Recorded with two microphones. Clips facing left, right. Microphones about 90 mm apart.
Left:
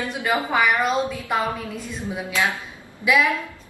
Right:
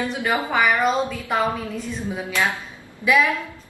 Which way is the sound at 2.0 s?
15° left (ahead or behind).